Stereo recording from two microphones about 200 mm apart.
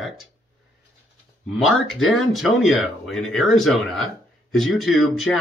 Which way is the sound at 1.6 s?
Centre (ahead or behind).